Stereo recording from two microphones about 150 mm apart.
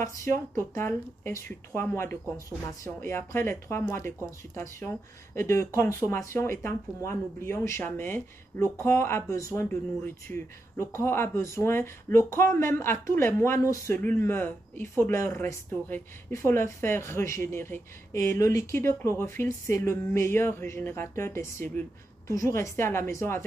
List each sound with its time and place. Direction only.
0.0 s speech: 20° left (ahead or behind)